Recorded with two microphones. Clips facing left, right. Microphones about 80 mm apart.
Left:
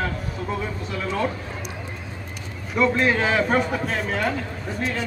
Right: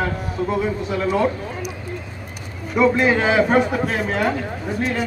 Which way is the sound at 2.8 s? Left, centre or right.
Centre.